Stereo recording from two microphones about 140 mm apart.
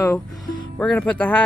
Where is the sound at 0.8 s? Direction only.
10° left (ahead or behind).